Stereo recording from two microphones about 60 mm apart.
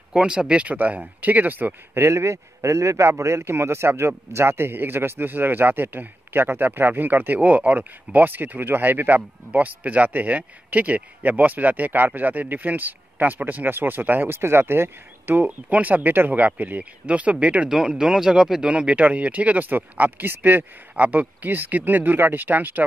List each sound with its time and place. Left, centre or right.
0.1 s speech: centre
2.0 s a man's voice: right
17.6 s speech: centre; by 22.8 s right